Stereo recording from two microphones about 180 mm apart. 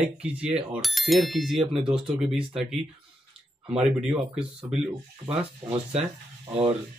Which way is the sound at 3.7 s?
5° right (ahead or behind).